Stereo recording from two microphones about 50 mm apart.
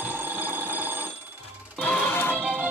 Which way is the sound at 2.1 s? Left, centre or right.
Left.